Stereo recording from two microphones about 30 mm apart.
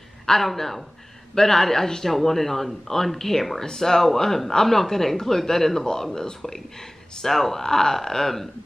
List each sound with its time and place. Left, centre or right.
0.3 s speech: centre
7.2 s speech: centre